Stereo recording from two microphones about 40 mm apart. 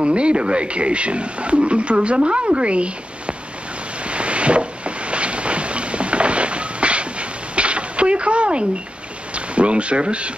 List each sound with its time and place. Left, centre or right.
0.0 s speech: right
4.0 s a sound: right
9.3 s speech: right